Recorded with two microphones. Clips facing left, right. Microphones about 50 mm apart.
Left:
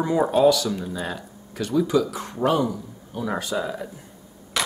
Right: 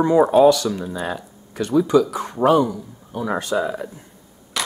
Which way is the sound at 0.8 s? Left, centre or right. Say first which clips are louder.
Right 3 dB; centre.